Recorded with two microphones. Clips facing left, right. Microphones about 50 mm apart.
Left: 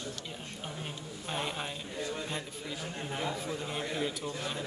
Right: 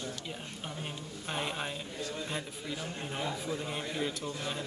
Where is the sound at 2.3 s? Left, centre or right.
Centre.